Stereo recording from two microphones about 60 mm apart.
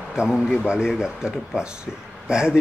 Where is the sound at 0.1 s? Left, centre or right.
Centre.